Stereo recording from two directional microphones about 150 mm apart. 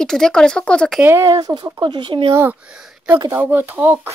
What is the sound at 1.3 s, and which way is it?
Speech, 30° right (ahead or behind).